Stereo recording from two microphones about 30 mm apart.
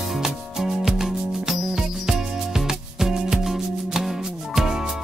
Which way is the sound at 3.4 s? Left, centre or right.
Centre.